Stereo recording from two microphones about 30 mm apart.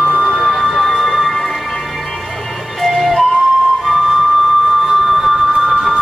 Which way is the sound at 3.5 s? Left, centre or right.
Centre.